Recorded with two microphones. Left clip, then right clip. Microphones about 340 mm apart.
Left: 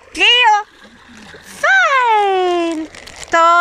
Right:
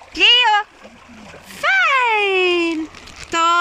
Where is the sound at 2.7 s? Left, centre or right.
Left.